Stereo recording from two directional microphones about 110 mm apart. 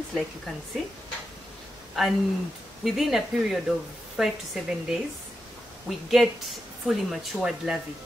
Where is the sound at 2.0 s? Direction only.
Centre (ahead or behind).